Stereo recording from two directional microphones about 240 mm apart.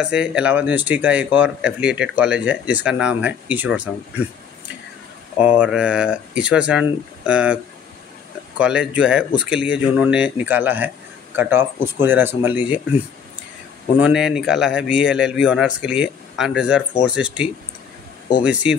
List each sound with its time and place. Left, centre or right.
0.0 s speech: centre
5.4 s speech: centre
8.5 s speech: centre
13.9 s speech: centre